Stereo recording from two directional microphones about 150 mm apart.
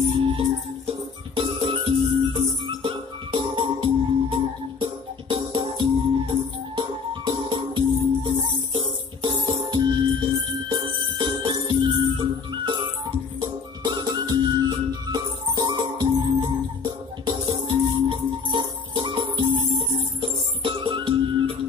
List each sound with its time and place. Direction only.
0.1 s music: 35° right (ahead or behind)